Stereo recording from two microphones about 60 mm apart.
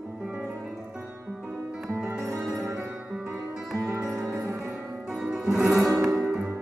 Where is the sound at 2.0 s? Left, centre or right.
Right.